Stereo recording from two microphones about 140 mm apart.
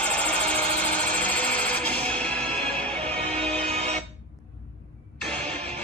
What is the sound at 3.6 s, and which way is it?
Music, 50° right (ahead or behind).